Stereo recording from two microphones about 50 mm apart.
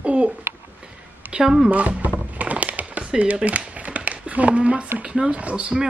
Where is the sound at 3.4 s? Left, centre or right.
Right.